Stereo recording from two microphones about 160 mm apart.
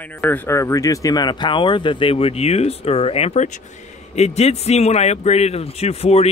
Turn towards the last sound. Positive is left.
turn(degrees=40)  # may be behind; listen again after turning